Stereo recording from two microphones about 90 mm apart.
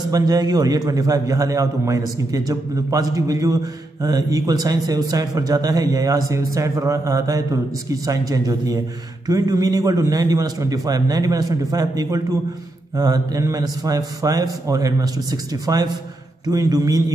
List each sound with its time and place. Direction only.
0.1 s a man's voice: 45° right (ahead or behind)